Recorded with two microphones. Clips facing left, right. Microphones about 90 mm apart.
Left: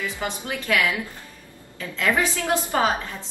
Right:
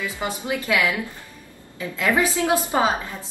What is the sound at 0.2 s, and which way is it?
A woman's voice, 20° right (ahead or behind).